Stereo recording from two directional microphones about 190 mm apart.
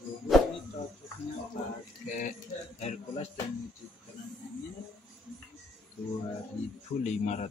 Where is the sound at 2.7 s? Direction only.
35° left (ahead or behind).